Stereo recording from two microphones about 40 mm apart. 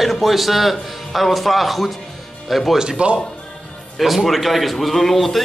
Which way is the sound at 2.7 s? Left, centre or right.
Centre.